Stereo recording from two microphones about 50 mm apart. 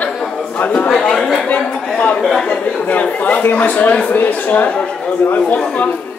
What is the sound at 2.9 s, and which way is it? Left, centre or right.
A man's voice, left.